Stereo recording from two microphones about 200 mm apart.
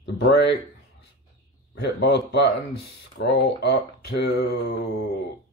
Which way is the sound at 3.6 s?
55° left (ahead or behind).